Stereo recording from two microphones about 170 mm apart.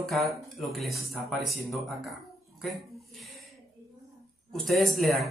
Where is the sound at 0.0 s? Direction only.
Centre (ahead or behind).